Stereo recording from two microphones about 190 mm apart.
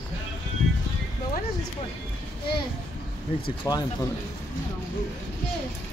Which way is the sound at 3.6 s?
20° left (ahead or behind).